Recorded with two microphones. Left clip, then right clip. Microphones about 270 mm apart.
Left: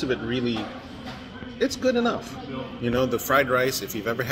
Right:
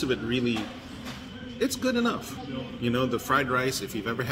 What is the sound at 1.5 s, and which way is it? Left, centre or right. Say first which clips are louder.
Speech: left 4 dB; centre.